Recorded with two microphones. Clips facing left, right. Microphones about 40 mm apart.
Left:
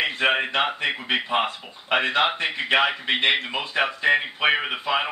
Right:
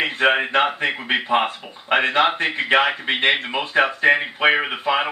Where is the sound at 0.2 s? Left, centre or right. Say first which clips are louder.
Right 4 dB; centre.